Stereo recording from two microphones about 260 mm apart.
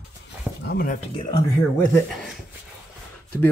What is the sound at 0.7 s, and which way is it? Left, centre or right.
Speech, left.